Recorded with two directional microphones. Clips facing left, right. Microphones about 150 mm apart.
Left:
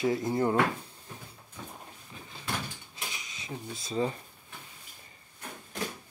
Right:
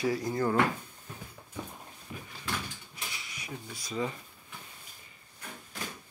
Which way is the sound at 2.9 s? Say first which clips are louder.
Left 1 dB; 20° left (ahead or behind).